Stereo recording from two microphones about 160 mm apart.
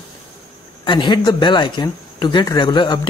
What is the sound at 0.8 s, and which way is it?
Speech, 30° left (ahead or behind).